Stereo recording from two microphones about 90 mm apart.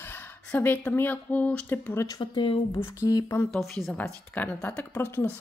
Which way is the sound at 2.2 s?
65° left (ahead or behind).